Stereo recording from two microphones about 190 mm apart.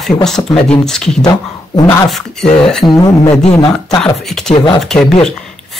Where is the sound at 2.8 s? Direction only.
20° left (ahead or behind).